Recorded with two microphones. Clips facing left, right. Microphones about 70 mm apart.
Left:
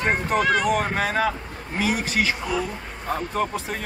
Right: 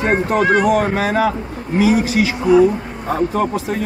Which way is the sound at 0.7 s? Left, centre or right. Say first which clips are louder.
Right 7 dB; centre.